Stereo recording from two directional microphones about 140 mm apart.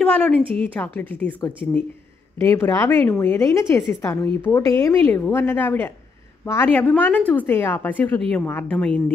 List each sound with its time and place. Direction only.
0.0 s a woman's voice: 10° left (ahead or behind)
2.4 s a woman's voice: 20° left (ahead or behind)